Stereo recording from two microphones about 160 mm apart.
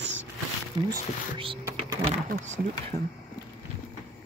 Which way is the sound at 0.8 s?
25° right (ahead or behind).